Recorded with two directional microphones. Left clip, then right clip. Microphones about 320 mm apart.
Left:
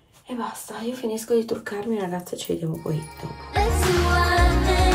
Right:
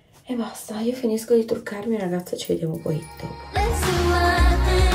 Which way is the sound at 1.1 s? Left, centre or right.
Centre.